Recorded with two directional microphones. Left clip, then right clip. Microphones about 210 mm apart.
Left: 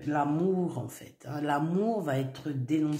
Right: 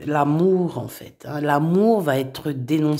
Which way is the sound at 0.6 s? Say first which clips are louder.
Right 8 dB; 35° right (ahead or behind).